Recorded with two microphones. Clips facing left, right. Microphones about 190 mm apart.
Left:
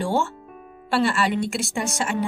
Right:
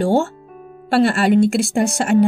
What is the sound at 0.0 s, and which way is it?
A woman's voice, 50° right (ahead or behind).